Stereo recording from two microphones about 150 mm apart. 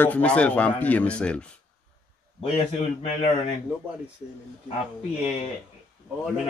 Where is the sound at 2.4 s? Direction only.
40° left (ahead or behind).